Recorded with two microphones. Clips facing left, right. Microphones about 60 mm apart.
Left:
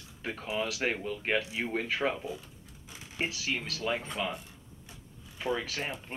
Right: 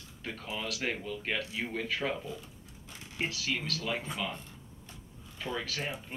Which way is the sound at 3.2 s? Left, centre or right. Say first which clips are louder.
Left 1 dB; centre.